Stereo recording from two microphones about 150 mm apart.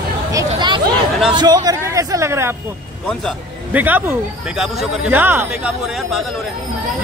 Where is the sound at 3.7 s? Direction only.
10° right (ahead or behind).